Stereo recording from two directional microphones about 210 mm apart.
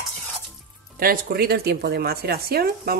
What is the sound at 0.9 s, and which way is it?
A woman's voice, 45° right (ahead or behind).